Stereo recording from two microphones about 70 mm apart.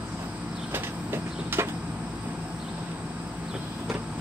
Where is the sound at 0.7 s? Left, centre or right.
Right.